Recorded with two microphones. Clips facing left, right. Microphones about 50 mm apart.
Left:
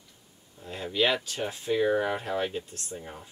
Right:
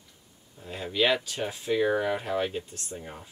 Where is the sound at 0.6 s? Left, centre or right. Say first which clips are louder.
Even; centre.